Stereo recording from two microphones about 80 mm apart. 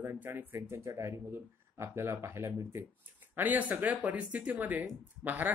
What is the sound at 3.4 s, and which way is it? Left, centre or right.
Speech, centre.